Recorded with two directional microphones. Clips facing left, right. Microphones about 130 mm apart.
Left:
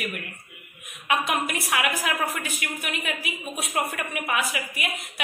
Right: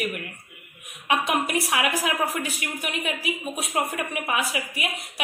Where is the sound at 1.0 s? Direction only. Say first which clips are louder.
Right 1 dB; 30° right (ahead or behind).